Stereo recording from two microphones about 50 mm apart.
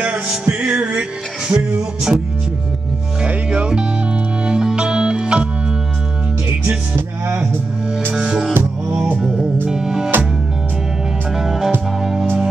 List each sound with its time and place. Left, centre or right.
0.3 s music: centre
3.3 s music: right
8.1 s music: centre
9.7 s music: centre
11.3 s music: centre